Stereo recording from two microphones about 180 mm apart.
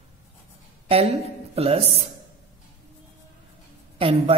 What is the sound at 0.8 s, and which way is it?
A woman's voice, 35° right (ahead or behind).